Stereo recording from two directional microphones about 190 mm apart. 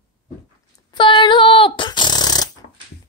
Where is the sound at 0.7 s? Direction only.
25° left (ahead or behind).